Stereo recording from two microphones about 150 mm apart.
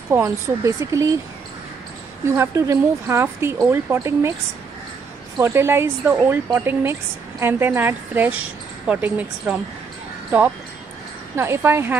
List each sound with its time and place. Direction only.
0.1 s speech: 20° right (ahead or behind)
2.2 s a woman's voice: 15° right (ahead or behind)
5.4 s a woman's voice: 15° right (ahead or behind)
11.3 s a woman's voice: 15° right (ahead or behind)